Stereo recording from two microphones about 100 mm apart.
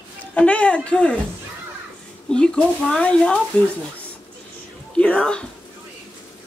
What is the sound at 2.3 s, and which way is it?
Speech, 10° left (ahead or behind).